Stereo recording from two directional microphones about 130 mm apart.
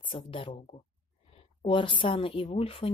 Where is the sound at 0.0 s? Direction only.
40° left (ahead or behind).